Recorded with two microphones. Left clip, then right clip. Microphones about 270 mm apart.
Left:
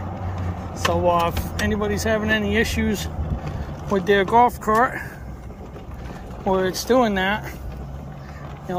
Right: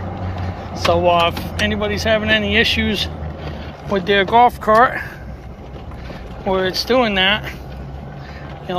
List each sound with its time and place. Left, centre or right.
0.7 s speech: centre
6.4 s speech: left